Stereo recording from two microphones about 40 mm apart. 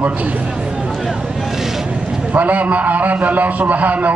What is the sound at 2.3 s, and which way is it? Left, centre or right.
A man's voice, right.